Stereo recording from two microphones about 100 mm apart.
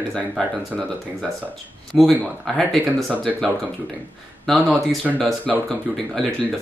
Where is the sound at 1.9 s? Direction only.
Centre (ahead or behind).